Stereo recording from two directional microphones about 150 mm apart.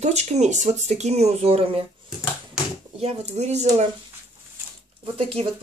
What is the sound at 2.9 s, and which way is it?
Speech, 45° right (ahead or behind).